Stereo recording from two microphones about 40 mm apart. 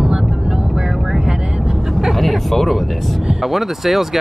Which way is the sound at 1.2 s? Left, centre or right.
Right.